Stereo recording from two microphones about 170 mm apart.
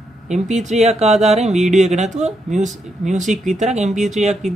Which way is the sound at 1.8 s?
40° right (ahead or behind).